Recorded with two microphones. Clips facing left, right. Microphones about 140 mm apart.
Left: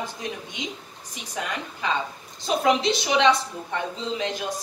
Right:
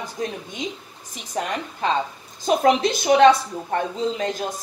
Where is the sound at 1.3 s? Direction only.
40° right (ahead or behind).